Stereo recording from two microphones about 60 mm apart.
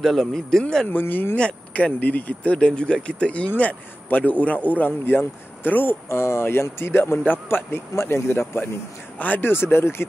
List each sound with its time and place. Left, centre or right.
0.0 s speech: centre
0.8 s a man's voice: left
1.3 s a man's voice: left
6.0 s a man's voice: left
9.5 s a man's voice: left